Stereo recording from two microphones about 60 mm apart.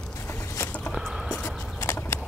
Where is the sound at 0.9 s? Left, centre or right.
Centre.